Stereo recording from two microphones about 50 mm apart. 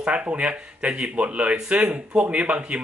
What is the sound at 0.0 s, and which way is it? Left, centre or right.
Speech, right.